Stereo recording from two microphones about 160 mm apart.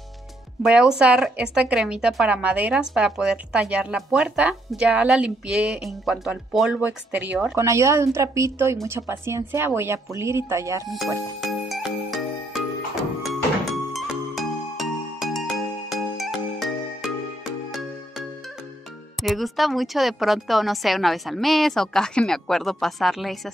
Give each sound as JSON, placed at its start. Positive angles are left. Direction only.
{"t": 0.6, "sound": "a woman's voice", "side_deg": -5}
{"t": 7.5, "sound": "speech", "side_deg": -20}
{"t": 13.2, "sound": "music", "side_deg": 0}
{"t": 19.2, "sound": "a woman's voice", "side_deg": 0}